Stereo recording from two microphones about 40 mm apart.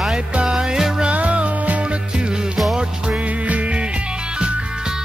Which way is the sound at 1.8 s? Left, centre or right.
Right.